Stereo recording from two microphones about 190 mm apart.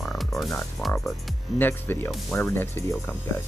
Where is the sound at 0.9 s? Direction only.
5° left (ahead or behind).